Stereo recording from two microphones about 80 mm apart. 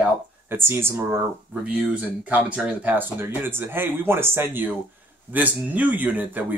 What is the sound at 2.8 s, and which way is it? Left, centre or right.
Speech, right.